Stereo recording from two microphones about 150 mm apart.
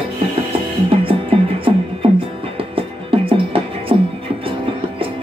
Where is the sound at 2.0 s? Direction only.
35° right (ahead or behind).